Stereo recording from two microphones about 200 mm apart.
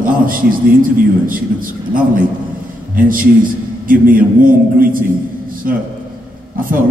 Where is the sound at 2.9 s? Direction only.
45° right (ahead or behind).